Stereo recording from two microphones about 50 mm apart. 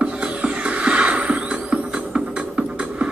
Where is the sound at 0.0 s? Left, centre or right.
Right.